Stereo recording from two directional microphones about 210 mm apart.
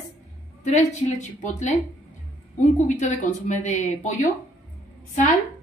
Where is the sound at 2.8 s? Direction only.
35° left (ahead or behind).